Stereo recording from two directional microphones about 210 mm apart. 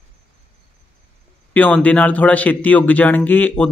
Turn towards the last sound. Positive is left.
turn(degrees=5)  # may be behind; listen again after turning